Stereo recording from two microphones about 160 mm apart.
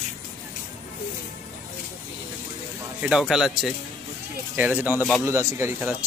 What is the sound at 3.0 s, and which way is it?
Speech, 5° right (ahead or behind).